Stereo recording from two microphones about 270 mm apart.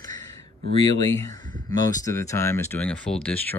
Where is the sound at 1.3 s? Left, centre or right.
Right.